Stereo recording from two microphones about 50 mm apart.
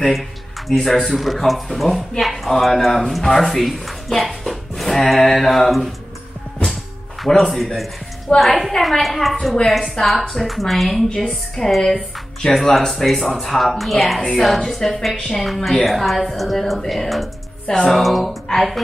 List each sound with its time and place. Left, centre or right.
0.7 s speech: centre
6.6 s music: centre
7.2 s speech: centre
15.4 s speech: centre
17.6 s speech: centre
17.9 s speech: centre